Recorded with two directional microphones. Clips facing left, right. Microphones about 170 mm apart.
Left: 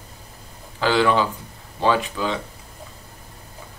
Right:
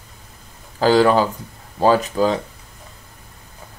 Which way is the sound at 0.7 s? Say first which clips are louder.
Right 5 dB; 40° right (ahead or behind).